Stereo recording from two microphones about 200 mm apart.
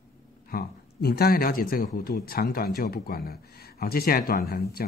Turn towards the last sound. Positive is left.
turn(degrees=50)  # may be behind; listen again after turning